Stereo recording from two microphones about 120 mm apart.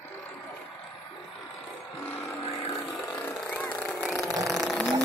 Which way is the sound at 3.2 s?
15° left (ahead or behind).